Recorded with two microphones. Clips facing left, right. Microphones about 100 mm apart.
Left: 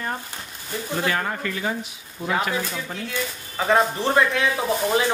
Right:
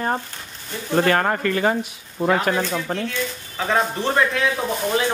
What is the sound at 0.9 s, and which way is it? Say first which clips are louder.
Speech: right 7 dB; 55° right (ahead or behind).